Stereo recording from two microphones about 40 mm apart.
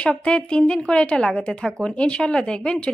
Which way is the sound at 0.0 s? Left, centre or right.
Left.